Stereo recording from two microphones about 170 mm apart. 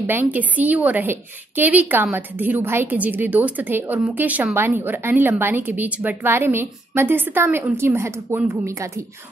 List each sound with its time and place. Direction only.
0.0 s a woman's voice: 10° right (ahead or behind)